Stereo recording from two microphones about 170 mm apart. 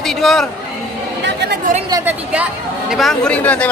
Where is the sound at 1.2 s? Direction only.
85° right.